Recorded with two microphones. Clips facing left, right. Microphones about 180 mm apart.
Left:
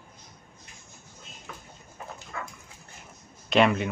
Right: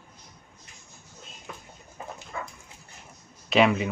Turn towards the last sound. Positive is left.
turn(degrees=0)  # may be behind; listen again after turning